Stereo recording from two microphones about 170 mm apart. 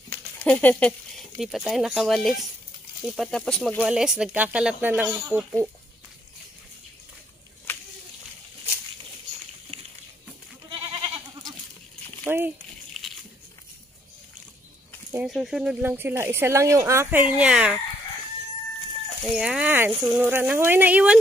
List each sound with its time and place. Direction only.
0.1 s a sound: 10° left (ahead or behind)
1.4 s speech: centre (ahead or behind)
12.3 s speech: 10° right (ahead or behind)
15.2 s speech: centre (ahead or behind)
19.2 s speech: centre (ahead or behind)